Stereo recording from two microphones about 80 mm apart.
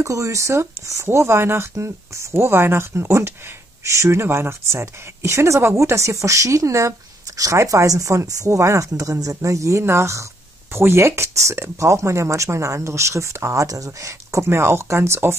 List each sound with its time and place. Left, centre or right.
0.0 s speech: right